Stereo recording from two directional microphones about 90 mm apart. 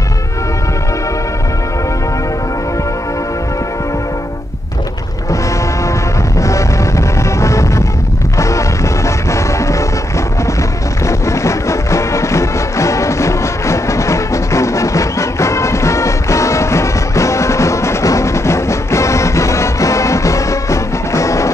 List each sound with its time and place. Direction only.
6.4 s music: 35° left (ahead or behind)
11.1 s music: 35° left (ahead or behind)